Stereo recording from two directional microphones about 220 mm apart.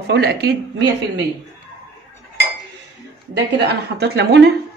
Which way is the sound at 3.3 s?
50° right (ahead or behind).